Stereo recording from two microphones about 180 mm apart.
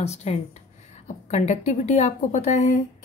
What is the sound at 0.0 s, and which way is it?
A woman's voice, 35° left (ahead or behind).